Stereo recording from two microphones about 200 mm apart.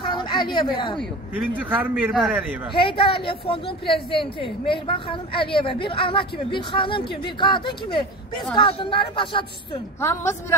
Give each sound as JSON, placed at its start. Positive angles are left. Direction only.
{"t": 0.0, "sound": "speech", "side_deg": 25}
{"t": 1.3, "sound": "a man's voice", "side_deg": -10}
{"t": 2.8, "sound": "a woman's voice", "side_deg": 25}
{"t": 9.9, "sound": "a woman's voice", "side_deg": 15}